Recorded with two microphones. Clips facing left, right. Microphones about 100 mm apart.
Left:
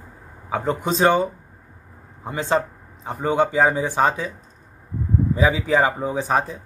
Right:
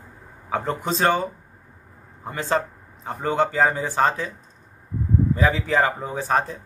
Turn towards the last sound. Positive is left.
turn(degrees=10)  # may be behind; listen again after turning